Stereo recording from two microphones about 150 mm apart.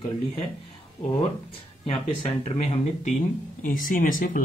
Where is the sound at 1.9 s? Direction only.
40° left (ahead or behind).